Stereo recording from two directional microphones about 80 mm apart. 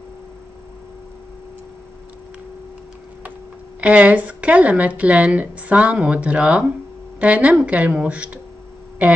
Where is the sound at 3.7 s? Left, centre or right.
Centre.